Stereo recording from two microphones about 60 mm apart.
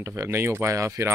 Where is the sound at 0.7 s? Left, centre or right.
Right.